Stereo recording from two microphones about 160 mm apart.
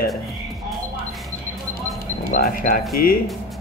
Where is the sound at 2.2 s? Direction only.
65° left (ahead or behind).